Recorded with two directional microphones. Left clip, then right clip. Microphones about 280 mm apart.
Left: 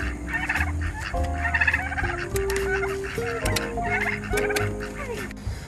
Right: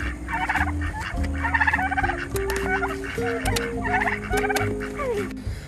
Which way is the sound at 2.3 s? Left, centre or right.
Centre.